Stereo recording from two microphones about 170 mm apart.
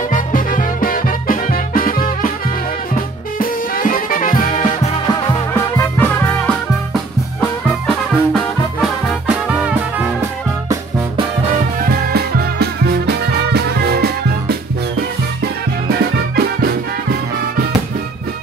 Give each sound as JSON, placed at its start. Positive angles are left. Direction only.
{"t": 0.1, "sound": "music", "side_deg": 50}
{"t": 5.1, "sound": "music", "side_deg": 15}
{"t": 9.3, "sound": "music", "side_deg": -5}
{"t": 11.8, "sound": "music", "side_deg": -65}